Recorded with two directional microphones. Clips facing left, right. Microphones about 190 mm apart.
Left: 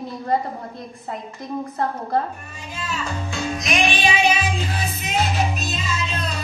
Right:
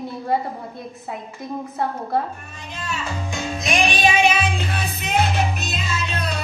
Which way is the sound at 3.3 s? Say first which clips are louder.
Even; 30° right (ahead or behind).